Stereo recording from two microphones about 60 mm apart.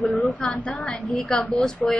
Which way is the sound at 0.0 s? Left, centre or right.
Left.